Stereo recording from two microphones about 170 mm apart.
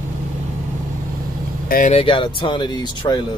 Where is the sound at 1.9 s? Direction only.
30° left (ahead or behind).